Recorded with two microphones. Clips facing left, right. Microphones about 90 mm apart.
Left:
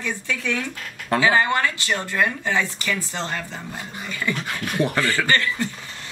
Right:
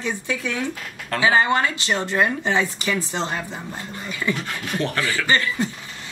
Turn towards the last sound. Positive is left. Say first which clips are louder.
# right 1 dB
turn(degrees=-20)  # may be behind; listen again after turning